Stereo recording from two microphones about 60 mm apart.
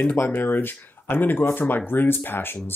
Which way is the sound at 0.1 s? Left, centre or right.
Left.